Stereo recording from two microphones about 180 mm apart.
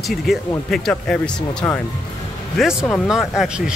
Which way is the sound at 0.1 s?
Centre (ahead or behind).